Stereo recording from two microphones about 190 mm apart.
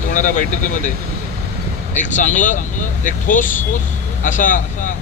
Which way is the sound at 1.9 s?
40° left (ahead or behind).